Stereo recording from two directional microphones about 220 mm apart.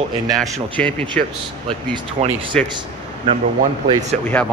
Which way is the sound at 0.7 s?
5° left (ahead or behind).